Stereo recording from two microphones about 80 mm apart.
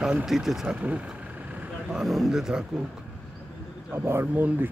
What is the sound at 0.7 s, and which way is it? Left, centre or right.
Vehicle, centre.